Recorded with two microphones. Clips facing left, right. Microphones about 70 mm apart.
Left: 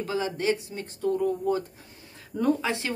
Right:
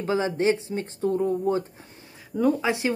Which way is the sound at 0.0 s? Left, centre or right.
Right.